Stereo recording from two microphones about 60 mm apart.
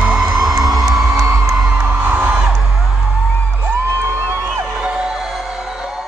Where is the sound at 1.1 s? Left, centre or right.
Right.